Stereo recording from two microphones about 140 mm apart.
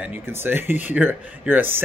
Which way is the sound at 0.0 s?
15° right (ahead or behind).